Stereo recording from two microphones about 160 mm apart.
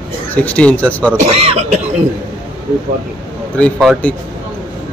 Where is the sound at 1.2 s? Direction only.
40° right (ahead or behind).